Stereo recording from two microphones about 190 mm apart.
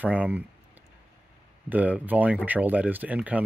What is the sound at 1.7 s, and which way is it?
Speech, 10° right (ahead or behind).